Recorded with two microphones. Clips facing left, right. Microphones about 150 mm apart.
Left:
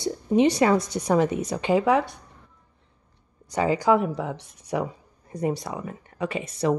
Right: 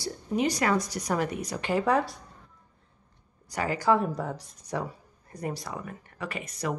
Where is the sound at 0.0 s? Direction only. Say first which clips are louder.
Left 8 dB; 25° left (ahead or behind).